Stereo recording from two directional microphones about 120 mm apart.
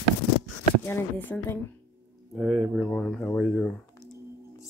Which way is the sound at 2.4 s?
10° right (ahead or behind).